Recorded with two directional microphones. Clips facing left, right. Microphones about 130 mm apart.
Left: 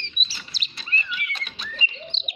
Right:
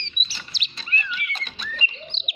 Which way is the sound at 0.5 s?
35° left (ahead or behind).